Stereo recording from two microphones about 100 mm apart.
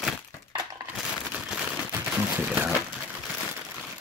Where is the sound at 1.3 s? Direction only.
5° right (ahead or behind).